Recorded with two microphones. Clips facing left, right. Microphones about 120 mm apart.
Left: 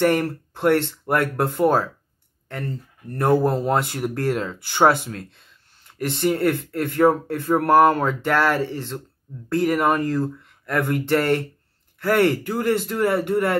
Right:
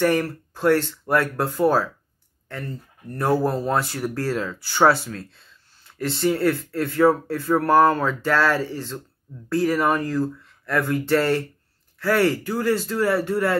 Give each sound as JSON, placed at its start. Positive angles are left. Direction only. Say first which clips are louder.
{"t": 0.0, "sound": "speech", "louder": "left 1 dB", "side_deg": 25}